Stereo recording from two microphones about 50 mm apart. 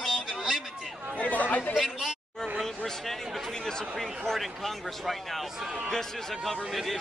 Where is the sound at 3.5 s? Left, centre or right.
Centre.